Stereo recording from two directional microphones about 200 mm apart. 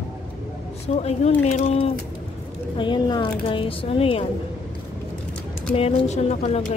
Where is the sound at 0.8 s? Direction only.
30° left (ahead or behind).